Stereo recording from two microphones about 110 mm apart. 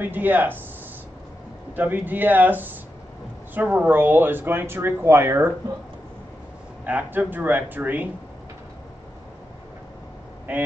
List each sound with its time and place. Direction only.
0.0 s speech: 15° right (ahead or behind)
1.8 s speech: 15° right (ahead or behind)
6.9 s speech: 15° right (ahead or behind)
10.5 s speech: 15° right (ahead or behind)